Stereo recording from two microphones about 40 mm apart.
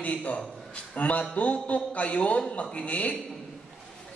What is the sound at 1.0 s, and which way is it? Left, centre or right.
A man's voice, left.